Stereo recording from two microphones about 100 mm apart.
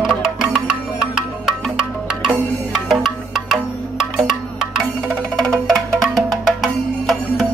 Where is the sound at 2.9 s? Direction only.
5° right (ahead or behind).